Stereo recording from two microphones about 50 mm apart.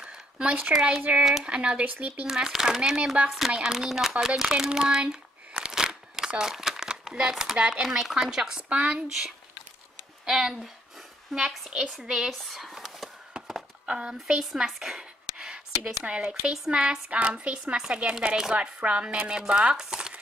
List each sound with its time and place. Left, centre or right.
0.0 s a sound: right
1.1 s speech: right
2.2 s speech: centre
4.4 s crumpling: centre
7.6 s speech: centre
8.6 s speech: right
10.2 s a sound: centre
11.3 s speech: centre
11.9 s speech: centre
12.4 s a sound: centre
13.8 s speech: centre
14.4 s speech: centre